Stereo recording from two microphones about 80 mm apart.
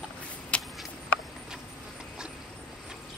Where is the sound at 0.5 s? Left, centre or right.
Centre.